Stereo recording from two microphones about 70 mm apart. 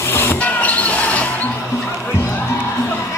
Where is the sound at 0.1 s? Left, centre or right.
Left.